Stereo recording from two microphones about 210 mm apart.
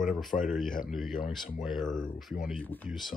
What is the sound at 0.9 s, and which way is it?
Speech, centre (ahead or behind).